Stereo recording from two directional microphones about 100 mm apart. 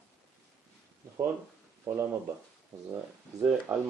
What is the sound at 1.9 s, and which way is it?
Speech, 25° right (ahead or behind).